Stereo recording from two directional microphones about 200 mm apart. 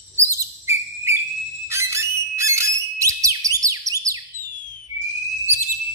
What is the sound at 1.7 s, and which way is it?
Whistle, 15° right (ahead or behind).